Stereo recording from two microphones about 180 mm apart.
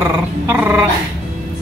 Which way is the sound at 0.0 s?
10° right (ahead or behind).